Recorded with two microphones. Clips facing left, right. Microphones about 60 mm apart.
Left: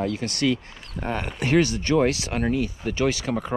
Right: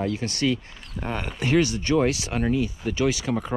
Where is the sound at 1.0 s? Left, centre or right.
Left.